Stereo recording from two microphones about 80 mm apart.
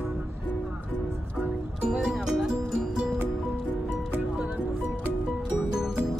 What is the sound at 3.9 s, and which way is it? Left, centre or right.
Music, centre.